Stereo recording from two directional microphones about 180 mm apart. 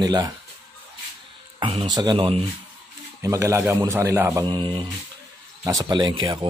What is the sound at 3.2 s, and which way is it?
A man's voice, 15° right (ahead or behind).